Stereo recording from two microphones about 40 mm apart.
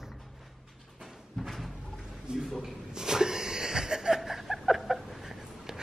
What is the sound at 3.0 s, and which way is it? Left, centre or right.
Wheeze, centre.